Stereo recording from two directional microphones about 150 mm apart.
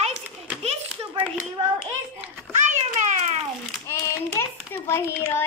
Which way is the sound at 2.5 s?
50° right (ahead or behind).